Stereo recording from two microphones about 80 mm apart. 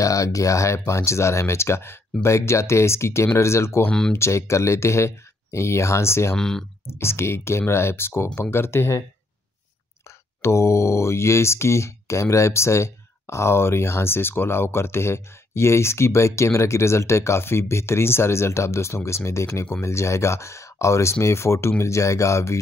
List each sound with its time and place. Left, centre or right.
0.0 s speech: left
6.3 s speech: centre
6.9 s speech: left
10.0 s speech: left